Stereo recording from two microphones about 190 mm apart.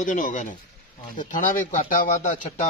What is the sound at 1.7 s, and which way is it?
Speech, 40° left (ahead or behind).